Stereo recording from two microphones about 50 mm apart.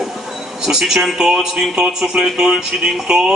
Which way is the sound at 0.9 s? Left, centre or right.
Centre.